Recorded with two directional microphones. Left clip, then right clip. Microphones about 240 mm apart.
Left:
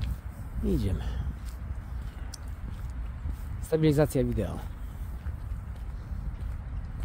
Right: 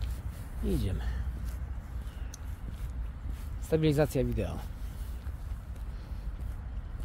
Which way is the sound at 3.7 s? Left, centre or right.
Left.